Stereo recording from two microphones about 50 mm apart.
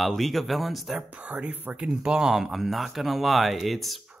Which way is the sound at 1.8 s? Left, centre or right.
Centre.